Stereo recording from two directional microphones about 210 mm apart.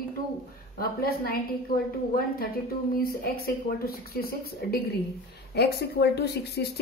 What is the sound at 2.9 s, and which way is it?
A woman's voice, 45° left (ahead or behind).